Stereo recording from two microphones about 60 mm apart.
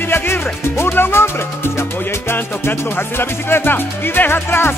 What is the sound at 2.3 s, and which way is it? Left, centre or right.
Music, left.